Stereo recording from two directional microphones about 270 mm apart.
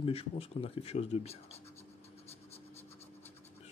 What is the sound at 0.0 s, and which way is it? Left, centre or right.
Speech, left.